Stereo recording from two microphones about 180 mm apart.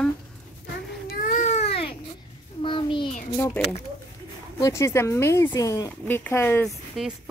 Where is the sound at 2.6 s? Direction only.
25° left (ahead or behind).